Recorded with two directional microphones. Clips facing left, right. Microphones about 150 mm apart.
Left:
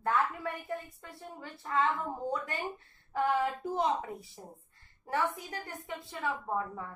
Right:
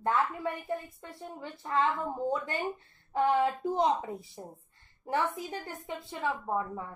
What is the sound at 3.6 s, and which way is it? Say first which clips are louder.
Speech: right 3 dB; 20° right (ahead or behind).